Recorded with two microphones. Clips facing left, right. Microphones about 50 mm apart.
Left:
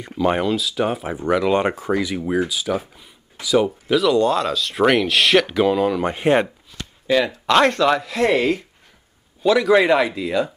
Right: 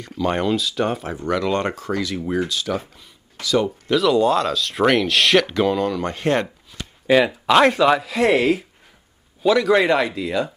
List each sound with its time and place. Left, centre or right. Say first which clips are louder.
0.0 s speech: left 3 dB; centre
0.4 s speech: even; centre
6.7 s speech: right 4 dB; centre